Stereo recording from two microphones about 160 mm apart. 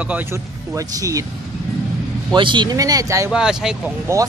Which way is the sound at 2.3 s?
30° right (ahead or behind).